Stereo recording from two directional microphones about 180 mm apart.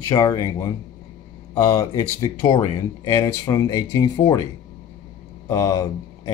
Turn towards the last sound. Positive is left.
turn(degrees=20)  # may be behind; listen again after turning